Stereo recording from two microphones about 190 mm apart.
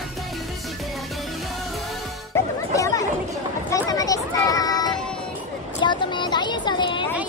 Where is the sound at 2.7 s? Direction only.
15° left (ahead or behind).